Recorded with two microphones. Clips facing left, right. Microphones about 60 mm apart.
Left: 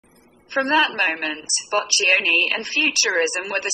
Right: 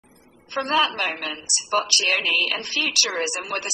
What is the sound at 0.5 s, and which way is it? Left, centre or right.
A woman's voice, left.